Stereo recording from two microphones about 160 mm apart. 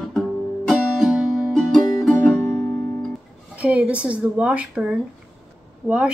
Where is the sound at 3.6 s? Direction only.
10° right (ahead or behind).